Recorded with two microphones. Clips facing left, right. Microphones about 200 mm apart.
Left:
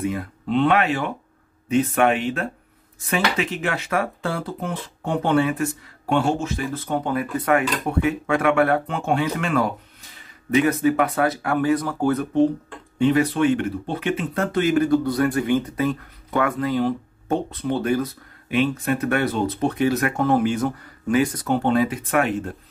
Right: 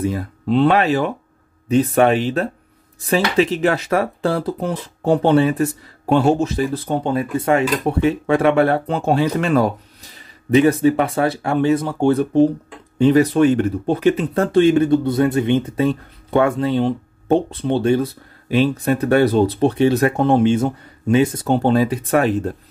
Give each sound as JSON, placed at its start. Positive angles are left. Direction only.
{"t": 0.0, "sound": "speech", "side_deg": -35}
{"t": 13.0, "sound": "speech", "side_deg": -40}